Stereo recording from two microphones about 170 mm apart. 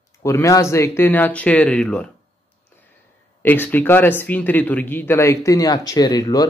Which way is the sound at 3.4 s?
10° left (ahead or behind).